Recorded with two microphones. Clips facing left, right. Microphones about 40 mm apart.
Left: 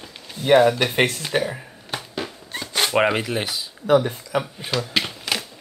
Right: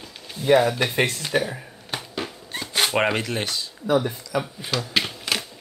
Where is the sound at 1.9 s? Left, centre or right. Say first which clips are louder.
Left 1 dB; centre.